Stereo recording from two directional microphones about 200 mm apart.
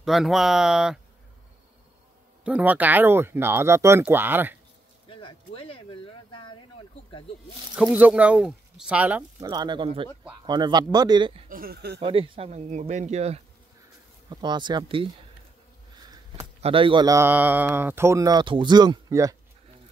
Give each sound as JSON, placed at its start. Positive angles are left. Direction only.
{"t": 0.0, "sound": "speech", "side_deg": 0}
{"t": 2.4, "sound": "a man's voice", "side_deg": -5}
{"t": 5.0, "sound": "a sound", "side_deg": 25}
{"t": 7.7, "sound": "speech", "side_deg": -5}
{"t": 9.5, "sound": "speech", "side_deg": -20}
{"t": 11.4, "sound": "speech", "side_deg": -45}
{"t": 12.0, "sound": "speech", "side_deg": -25}
{"t": 14.3, "sound": "speech", "side_deg": -20}
{"t": 16.0, "sound": "a sound", "side_deg": -20}
{"t": 16.6, "sound": "a man's voice", "side_deg": -25}